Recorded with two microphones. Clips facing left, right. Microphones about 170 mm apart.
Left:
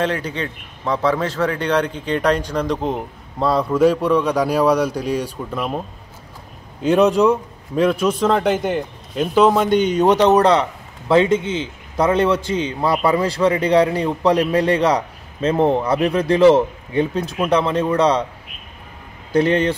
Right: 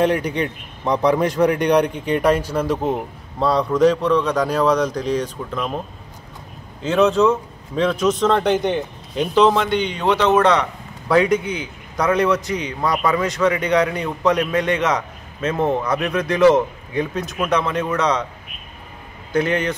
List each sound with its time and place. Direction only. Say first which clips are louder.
0.0 s a man's voice: right 3 dB; 15° right (ahead or behind); by 5.8 s 10° left (ahead or behind)
6.8 s a man's voice: left 2 dB; 15° left (ahead or behind)
9.7 s a man's voice: left 5 dB; 40° left (ahead or behind)
19.3 s a man's voice: left 3 dB; 30° left (ahead or behind)